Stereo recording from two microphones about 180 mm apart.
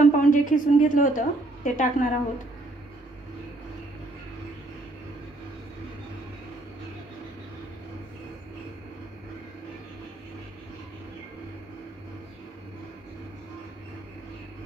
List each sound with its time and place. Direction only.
0.0 s a woman's voice: 50° left (ahead or behind)